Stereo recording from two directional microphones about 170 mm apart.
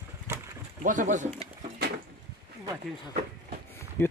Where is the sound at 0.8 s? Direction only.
50° right (ahead or behind).